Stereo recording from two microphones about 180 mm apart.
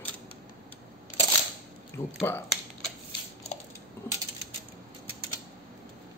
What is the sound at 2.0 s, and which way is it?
Speech, 15° left (ahead or behind).